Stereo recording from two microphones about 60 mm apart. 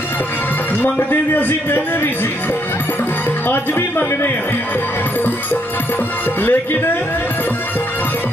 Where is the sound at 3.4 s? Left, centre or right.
Left.